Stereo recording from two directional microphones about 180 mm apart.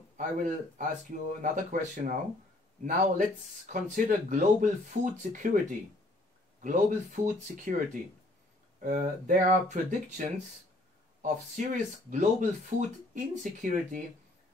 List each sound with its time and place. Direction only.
0.2 s speech: 45° right (ahead or behind)
11.2 s speech: 45° right (ahead or behind)